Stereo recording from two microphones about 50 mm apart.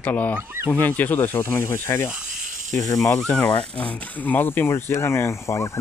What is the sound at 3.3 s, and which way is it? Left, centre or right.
Speech, left.